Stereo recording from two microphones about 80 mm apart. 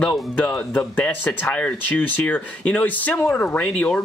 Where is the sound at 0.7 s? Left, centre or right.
Centre.